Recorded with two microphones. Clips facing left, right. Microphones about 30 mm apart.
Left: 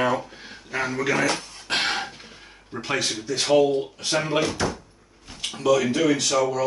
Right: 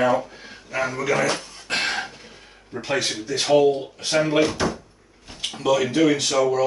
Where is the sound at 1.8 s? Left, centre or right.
Centre.